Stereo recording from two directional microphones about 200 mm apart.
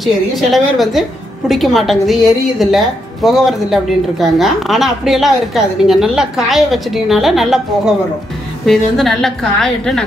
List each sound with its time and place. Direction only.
0.0 s speech: centre (ahead or behind)